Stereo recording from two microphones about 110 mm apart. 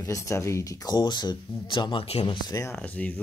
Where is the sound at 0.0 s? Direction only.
25° left (ahead or behind); by 2.6 s 40° left (ahead or behind).